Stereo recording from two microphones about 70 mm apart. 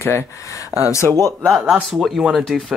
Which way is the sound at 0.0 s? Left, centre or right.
Left.